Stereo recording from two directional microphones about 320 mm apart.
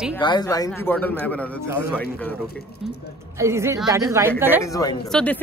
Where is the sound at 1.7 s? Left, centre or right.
Centre.